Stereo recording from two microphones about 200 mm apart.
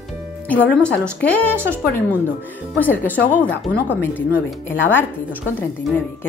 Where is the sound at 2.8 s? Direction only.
10° left (ahead or behind).